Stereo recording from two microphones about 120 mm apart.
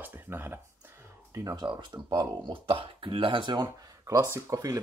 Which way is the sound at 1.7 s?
40° right (ahead or behind).